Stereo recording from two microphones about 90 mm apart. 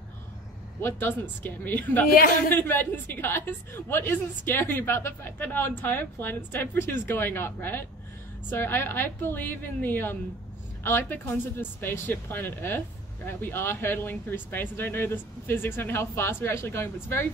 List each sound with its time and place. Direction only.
0.7 s speech: 25° left (ahead or behind)